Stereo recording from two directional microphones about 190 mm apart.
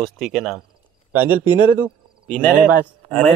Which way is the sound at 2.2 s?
5° left (ahead or behind).